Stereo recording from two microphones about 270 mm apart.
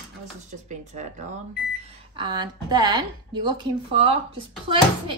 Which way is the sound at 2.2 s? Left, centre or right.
Centre.